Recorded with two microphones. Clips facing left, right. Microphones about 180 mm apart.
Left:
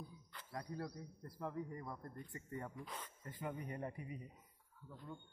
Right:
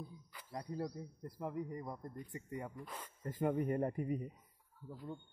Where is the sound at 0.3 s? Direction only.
10° right (ahead or behind).